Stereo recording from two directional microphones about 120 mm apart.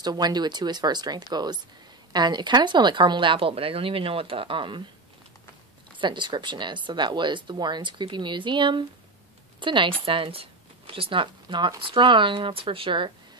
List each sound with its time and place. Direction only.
0.0 s speech: 35° right (ahead or behind)
5.9 s speech: 40° right (ahead or behind)